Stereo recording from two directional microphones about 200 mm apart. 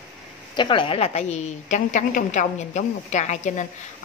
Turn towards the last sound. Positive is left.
turn(degrees=35)  # may be behind; listen again after turning